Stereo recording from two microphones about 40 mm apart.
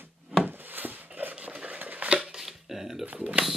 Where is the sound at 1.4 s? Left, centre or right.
Right.